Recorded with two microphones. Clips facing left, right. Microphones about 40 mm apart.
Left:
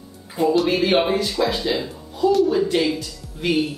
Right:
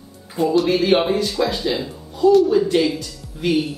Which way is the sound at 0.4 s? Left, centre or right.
Centre.